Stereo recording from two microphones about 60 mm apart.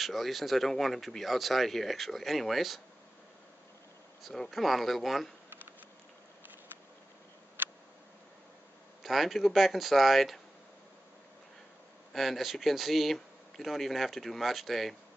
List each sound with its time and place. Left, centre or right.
0.0 s speech: centre
4.2 s speech: centre
7.6 s tick: right
9.0 s speech: centre
12.1 s speech: centre